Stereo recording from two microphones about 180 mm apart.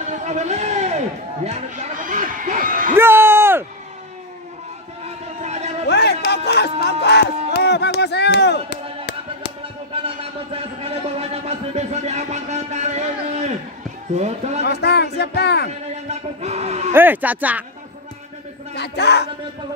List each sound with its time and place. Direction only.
0.0 s a sound: 40° right (ahead or behind)
3.0 s a sound: 15° right (ahead or behind)
5.0 s run: 40° right (ahead or behind)
5.9 s music: 65° left (ahead or behind)
10.0 s a sound: 35° right (ahead or behind)
14.1 s speech: 40° right (ahead or behind)
14.6 s speech: 65° left (ahead or behind)
16.1 s music: 40° right (ahead or behind)
16.9 s speech: 10° right (ahead or behind)
18.8 s speech: 70° left (ahead or behind)